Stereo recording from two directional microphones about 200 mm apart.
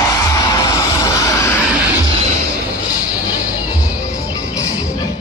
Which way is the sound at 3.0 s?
10° right (ahead or behind).